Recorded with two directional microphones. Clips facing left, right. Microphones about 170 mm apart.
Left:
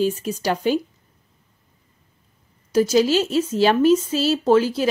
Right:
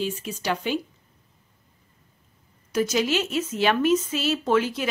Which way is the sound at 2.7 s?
35° left (ahead or behind).